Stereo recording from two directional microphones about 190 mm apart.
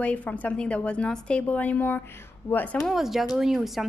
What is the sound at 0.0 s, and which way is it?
A woman's voice, 5° left (ahead or behind).